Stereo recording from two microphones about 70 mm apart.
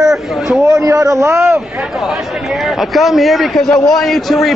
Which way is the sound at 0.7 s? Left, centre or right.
Right.